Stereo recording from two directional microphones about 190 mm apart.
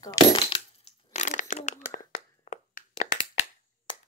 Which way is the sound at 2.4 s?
40° left (ahead or behind).